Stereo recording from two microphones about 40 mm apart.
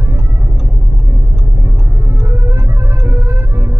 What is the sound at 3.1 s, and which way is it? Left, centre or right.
Music, right.